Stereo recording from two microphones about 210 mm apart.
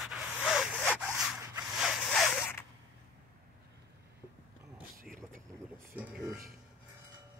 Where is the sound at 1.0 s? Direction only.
5° right (ahead or behind).